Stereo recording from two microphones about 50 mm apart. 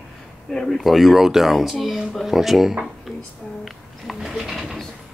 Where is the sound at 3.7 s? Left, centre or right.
Centre.